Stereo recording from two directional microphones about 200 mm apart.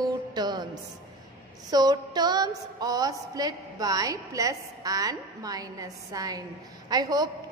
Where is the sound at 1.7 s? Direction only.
20° right (ahead or behind).